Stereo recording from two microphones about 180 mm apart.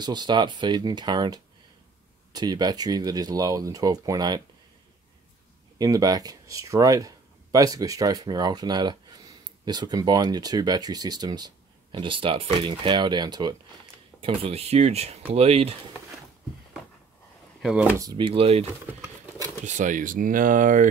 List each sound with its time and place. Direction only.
0.0 s speech: 25° right (ahead or behind)
5.8 s speech: 20° right (ahead or behind)
17.6 s speech: 5° right (ahead or behind)
18.1 s speech: 30° right (ahead or behind)
18.9 s patter: 20° right (ahead or behind)
19.6 s speech: 45° right (ahead or behind)